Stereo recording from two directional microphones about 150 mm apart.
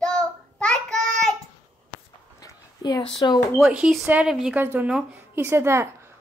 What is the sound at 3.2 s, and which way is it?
Speech, 25° left (ahead or behind).